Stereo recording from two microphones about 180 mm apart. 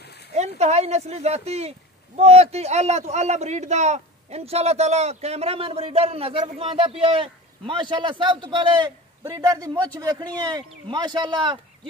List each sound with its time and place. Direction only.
0.3 s speech: 40° right (ahead or behind)